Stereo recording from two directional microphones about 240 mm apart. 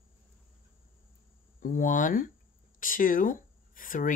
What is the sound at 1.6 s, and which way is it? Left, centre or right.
Speech, left.